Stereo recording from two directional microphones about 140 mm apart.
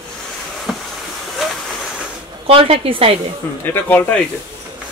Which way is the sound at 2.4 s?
40° right (ahead or behind).